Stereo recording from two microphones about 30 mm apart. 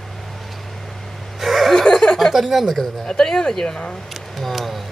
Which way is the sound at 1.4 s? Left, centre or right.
Centre.